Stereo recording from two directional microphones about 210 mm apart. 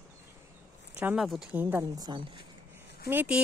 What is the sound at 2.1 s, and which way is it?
Speech, 25° right (ahead or behind).